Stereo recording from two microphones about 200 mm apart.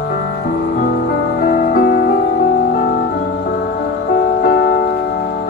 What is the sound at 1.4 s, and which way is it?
Music, 50° left (ahead or behind).